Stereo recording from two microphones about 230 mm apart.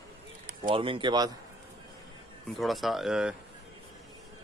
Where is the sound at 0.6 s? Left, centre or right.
Right.